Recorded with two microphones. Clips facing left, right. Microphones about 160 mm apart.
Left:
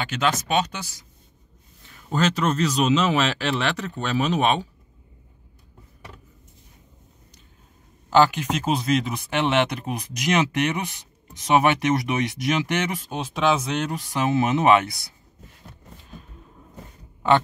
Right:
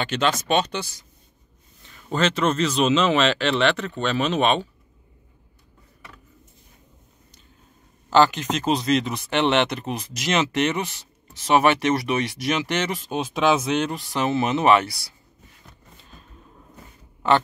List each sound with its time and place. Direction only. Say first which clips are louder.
0.2 s speech: right 1 dB; 5° left (ahead or behind)
2.0 s speech: right 1 dB; 5° left (ahead or behind)
8.1 s speech: even; 10° left (ahead or behind)
13.1 s speech: right 2 dB; 5° right (ahead or behind)
14.1 s speech: left 1 dB; 15° left (ahead or behind)